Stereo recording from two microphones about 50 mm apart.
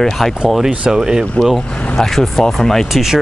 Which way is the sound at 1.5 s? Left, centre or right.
Centre.